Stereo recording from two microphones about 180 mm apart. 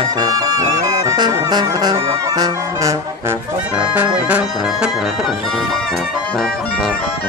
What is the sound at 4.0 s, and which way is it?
Music, 10° right (ahead or behind).